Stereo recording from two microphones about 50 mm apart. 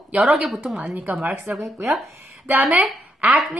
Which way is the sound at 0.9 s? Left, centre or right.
Right.